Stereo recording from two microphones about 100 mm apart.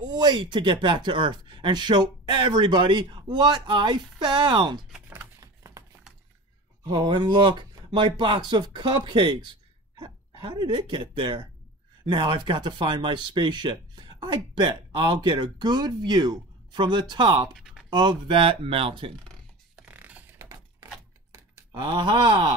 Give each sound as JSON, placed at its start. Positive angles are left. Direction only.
{"t": 0.0, "sound": "speech", "side_deg": -50}
{"t": 5.4, "sound": "typing", "side_deg": -35}
{"t": 6.8, "sound": "speech", "side_deg": -50}
{"t": 19.7, "sound": "mechanisms", "side_deg": -15}
{"t": 21.3, "sound": "a sound", "side_deg": -30}
{"t": 21.9, "sound": "speech", "side_deg": -50}